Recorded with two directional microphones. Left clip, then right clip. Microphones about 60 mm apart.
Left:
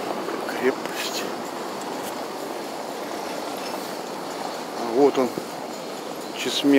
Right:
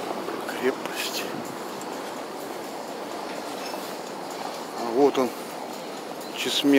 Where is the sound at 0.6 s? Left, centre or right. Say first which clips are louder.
Left 3 dB; centre.